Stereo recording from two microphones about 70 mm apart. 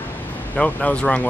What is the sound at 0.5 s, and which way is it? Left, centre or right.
Speech, centre.